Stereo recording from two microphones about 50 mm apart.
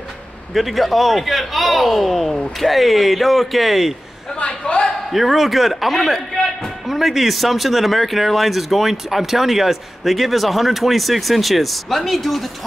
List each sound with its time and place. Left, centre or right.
0.6 s speech: centre
4.4 s a sound: left
5.1 s speech: centre